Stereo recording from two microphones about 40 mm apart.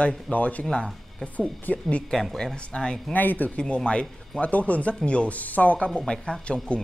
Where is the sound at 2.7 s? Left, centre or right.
Centre.